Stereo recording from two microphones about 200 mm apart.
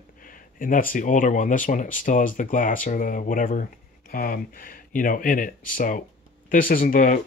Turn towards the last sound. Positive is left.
turn(degrees=45)  # may be behind; listen again after turning